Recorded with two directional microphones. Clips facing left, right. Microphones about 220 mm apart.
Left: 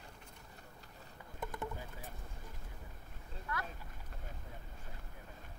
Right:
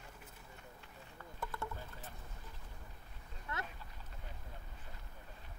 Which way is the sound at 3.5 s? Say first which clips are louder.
Left 2 dB; 25° right (ahead or behind).